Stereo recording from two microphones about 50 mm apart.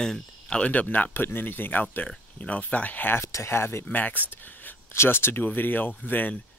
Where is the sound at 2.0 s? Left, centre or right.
Left.